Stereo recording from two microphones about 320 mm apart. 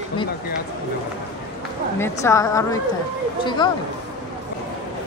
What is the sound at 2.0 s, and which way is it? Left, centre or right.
Speech, centre.